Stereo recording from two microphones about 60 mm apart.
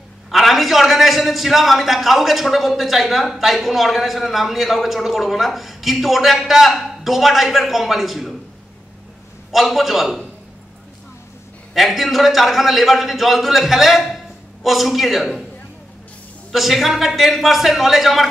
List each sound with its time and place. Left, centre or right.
0.3 s a man's voice: centre
9.5 s a man's voice: centre
11.7 s a man's voice: centre
16.5 s a man's voice: centre